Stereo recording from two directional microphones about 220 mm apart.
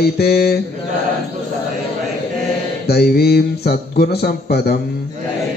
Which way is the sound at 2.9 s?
45° left (ahead or behind).